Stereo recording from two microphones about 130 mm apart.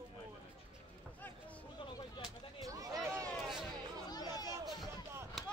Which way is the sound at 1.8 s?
40° left (ahead or behind).